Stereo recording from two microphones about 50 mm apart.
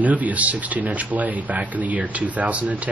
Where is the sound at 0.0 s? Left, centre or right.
Right.